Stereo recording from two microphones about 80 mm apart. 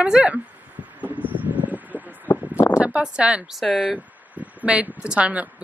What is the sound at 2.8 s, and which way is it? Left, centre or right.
Speech, centre.